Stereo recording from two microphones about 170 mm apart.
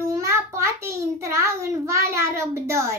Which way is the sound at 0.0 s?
15° right (ahead or behind).